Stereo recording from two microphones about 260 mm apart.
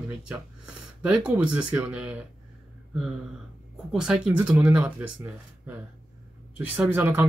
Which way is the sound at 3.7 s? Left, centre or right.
Centre.